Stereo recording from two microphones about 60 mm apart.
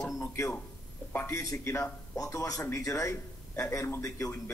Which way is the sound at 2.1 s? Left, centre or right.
Left.